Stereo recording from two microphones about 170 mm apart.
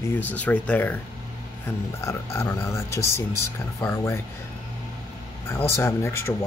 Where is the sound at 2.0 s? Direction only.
15° left (ahead or behind).